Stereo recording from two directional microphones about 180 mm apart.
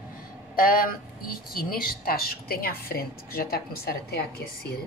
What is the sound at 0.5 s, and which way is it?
A woman's voice, 50° left (ahead or behind).